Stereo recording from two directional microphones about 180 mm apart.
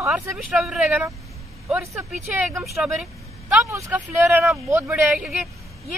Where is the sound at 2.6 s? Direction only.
Centre (ahead or behind).